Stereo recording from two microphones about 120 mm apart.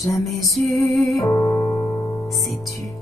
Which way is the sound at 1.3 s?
10° left (ahead or behind).